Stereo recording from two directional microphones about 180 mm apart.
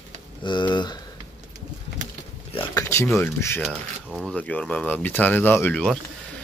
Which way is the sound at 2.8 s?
15° left (ahead or behind).